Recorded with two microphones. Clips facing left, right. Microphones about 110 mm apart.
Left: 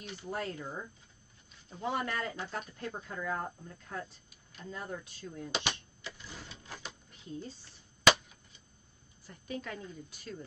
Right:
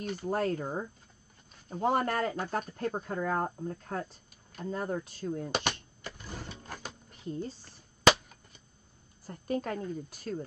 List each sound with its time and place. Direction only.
0.0 s speech: 45° right (ahead or behind)